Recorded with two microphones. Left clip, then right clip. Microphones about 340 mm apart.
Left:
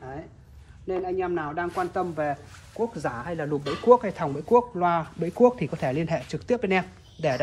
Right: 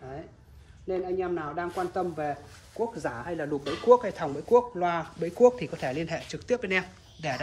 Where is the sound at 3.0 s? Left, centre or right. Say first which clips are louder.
Left 2 dB; centre.